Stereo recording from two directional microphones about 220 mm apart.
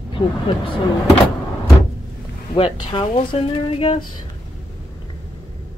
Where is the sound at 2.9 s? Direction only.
20° left (ahead or behind).